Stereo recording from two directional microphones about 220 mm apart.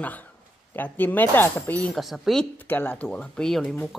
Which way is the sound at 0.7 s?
10° left (ahead or behind).